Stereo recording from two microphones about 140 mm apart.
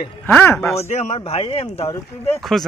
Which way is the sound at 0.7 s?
55° left (ahead or behind).